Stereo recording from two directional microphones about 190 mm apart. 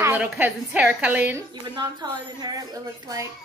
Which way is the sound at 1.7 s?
25° right (ahead or behind).